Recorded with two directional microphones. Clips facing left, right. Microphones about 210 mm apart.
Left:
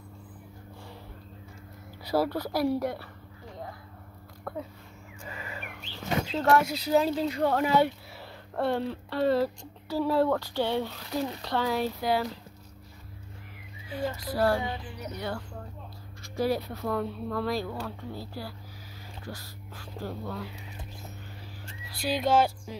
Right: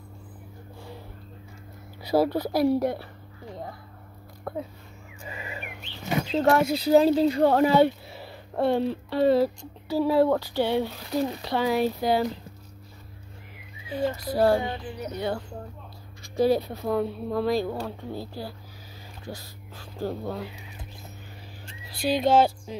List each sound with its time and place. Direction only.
2.0 s speech: 20° right (ahead or behind)
4.5 s speech: 15° right (ahead or behind)
5.3 s whistling: 15° right (ahead or behind)
6.3 s speech: 25° right (ahead or behind)
8.2 s speech: 15° right (ahead or behind)
13.9 s speech: 25° right (ahead or behind)
21.9 s a sound: 20° right (ahead or behind)